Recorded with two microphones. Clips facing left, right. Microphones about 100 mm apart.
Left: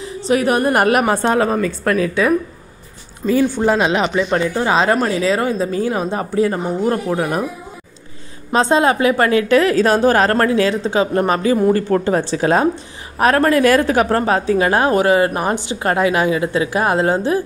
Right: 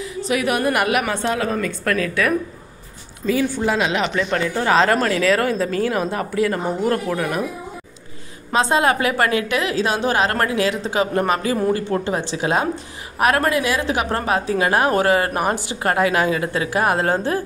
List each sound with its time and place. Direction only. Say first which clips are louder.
0.0 s a woman's voice: left 4 dB; 35° left (ahead or behind)
3.3 s a woman's voice: left 4 dB; 35° left (ahead or behind)
8.5 s a woman's voice: left 3 dB; 30° left (ahead or behind)
11.7 s a woman's voice: left 5 dB; 40° left (ahead or behind)
13.6 s a woman's voice: left 7 dB; 50° left (ahead or behind); by 17.4 s 20° left (ahead or behind)